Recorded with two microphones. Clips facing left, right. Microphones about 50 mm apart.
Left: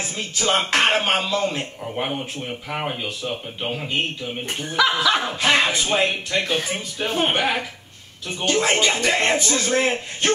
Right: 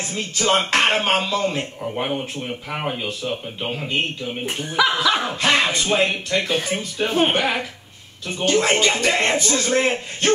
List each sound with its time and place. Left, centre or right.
0.4 s a man's voice: centre